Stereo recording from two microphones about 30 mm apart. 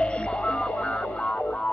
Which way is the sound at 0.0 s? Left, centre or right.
Left.